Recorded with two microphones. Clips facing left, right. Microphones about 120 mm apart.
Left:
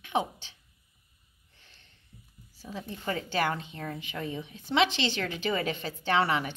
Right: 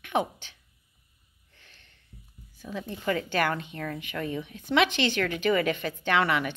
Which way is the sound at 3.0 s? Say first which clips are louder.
Right 3 dB; 30° left (ahead or behind).